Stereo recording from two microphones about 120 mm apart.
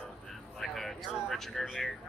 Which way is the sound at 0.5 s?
Centre (ahead or behind).